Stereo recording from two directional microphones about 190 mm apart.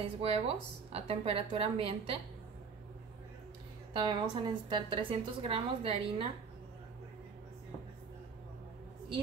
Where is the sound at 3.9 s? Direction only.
25° right (ahead or behind).